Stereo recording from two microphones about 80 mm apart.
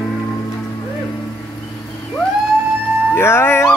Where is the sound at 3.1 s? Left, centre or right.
Left.